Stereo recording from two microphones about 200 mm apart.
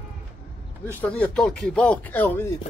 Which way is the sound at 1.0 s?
5° left (ahead or behind).